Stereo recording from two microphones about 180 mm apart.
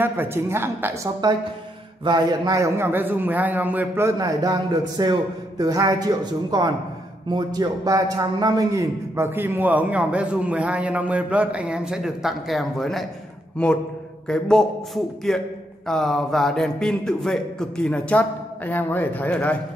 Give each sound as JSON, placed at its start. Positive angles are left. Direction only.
{"t": 0.0, "sound": "a man's voice", "side_deg": -10}
{"t": 2.0, "sound": "a man's voice", "side_deg": -20}
{"t": 14.2, "sound": "speech", "side_deg": 5}